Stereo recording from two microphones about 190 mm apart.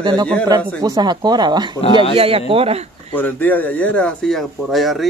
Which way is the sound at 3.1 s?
10° left (ahead or behind).